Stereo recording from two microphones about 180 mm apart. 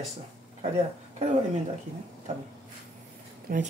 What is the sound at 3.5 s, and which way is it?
Speech, 55° right (ahead or behind).